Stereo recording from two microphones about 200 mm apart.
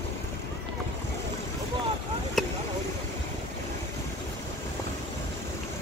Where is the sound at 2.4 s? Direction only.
Centre (ahead or behind).